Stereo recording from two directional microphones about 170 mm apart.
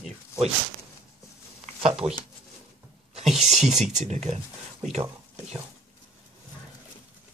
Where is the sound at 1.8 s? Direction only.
35° right (ahead or behind).